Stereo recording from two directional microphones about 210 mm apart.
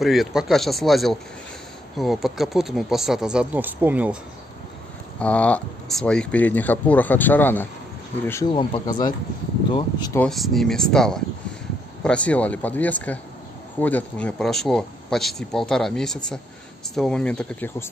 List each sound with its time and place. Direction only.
0.0 s speech: centre (ahead or behind)
5.2 s speech: 5° left (ahead or behind)
10.1 s speech: 5° left (ahead or behind)